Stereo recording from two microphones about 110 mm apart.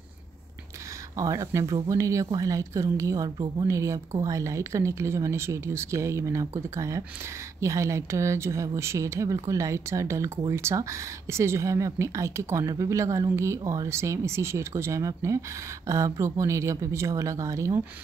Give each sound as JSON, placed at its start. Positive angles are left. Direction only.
{"t": 1.1, "sound": "speech", "side_deg": -30}